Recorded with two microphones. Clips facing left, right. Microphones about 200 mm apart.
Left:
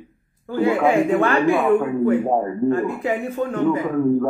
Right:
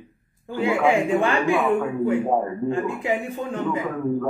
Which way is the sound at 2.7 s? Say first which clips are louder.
Left 2 dB; 35° left (ahead or behind).